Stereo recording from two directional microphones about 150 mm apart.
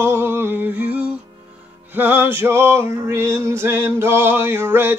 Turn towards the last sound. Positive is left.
turn(degrees=-15)  # may be behind; listen again after turning